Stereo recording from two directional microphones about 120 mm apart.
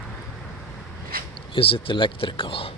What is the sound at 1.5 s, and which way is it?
Speech, 45° left (ahead or behind).